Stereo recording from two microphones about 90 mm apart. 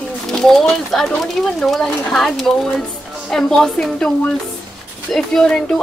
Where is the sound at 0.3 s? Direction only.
5° left (ahead or behind).